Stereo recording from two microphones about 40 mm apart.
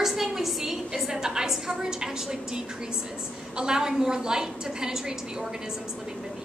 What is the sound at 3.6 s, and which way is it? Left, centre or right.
A woman's voice, centre.